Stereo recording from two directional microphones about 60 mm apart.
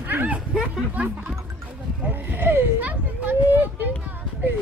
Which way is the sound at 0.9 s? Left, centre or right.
Right.